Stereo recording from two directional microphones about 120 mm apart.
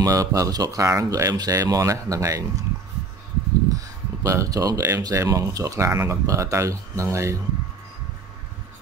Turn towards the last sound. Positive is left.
turn(degrees=-25)  # may be behind; listen again after turning